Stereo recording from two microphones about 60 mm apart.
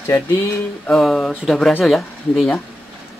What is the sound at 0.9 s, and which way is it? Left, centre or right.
Speech, centre.